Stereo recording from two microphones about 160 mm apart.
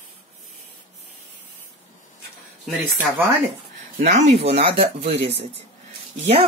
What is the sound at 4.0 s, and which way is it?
Speech, 45° right (ahead or behind).